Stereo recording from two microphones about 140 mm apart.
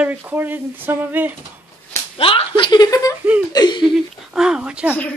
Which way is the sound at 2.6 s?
30° left (ahead or behind).